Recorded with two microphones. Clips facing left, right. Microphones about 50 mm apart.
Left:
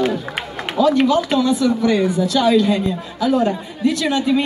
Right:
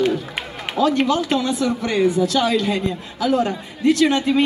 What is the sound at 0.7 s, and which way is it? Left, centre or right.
A woman's voice, right.